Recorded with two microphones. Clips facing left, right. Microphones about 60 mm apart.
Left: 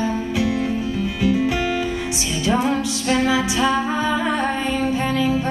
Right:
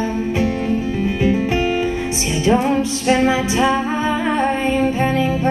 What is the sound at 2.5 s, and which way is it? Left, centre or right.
Music, right.